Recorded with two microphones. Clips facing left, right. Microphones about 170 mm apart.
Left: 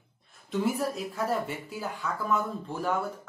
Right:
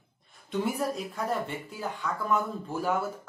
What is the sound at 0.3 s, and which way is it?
Speech, centre (ahead or behind).